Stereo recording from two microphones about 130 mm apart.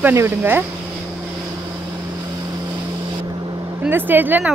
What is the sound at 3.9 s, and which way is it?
Speech, 15° right (ahead or behind).